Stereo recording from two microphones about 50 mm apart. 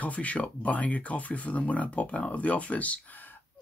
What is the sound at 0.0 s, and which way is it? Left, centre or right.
Speech, left.